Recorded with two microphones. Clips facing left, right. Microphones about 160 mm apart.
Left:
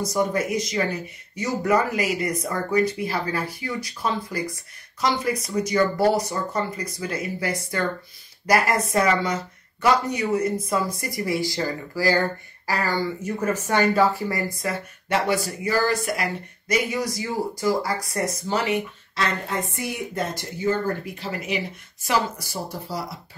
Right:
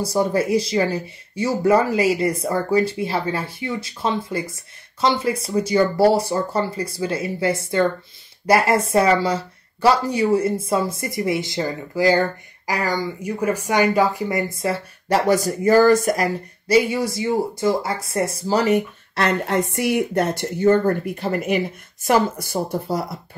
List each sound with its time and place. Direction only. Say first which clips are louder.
0.0 s speech: right 4 dB; 30° right (ahead or behind)
16.6 s speech: right 7 dB; 30° right (ahead or behind)
19.1 s speech: right 6 dB; 65° right (ahead or behind)